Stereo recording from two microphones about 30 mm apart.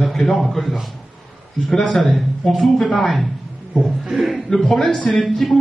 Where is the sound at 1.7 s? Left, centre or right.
Left.